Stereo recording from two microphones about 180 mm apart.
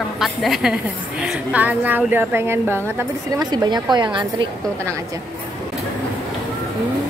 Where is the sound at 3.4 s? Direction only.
25° right (ahead or behind).